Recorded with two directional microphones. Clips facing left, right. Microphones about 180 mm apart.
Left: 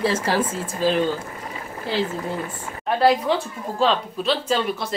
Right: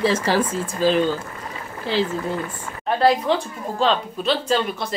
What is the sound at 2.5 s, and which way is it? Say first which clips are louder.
Speech: even; 20° left (ahead or behind).